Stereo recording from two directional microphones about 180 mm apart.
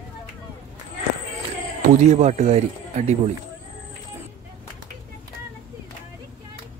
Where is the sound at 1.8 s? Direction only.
40° right (ahead or behind).